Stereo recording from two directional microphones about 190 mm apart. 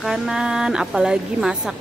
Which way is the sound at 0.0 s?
5° right (ahead or behind).